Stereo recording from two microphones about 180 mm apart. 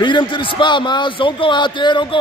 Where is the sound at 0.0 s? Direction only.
25° left (ahead or behind).